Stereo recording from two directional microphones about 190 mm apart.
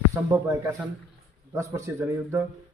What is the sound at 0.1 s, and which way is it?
A man's voice, 15° right (ahead or behind).